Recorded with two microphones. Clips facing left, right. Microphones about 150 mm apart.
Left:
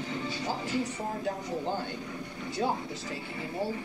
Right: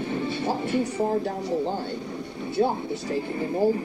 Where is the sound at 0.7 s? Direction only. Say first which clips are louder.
Right 8 dB; 65° right (ahead or behind).